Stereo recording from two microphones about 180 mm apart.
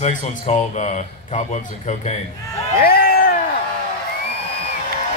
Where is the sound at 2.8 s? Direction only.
55° left (ahead or behind).